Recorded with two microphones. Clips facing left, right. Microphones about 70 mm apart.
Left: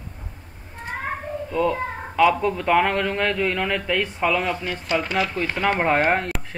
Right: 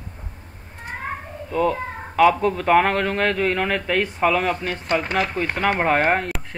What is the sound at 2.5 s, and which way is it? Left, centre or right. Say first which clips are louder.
Speech: right 2 dB; right.